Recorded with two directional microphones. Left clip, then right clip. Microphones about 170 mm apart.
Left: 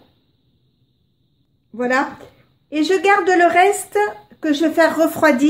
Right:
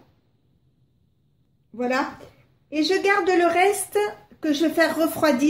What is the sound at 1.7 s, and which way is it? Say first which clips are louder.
A woman's voice: left 6 dB; 30° left (ahead or behind).